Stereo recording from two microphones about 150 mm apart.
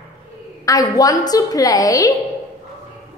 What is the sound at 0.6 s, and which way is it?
A woman's voice, 25° left (ahead or behind).